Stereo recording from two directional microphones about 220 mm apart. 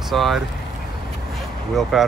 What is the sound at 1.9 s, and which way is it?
Speech, centre (ahead or behind).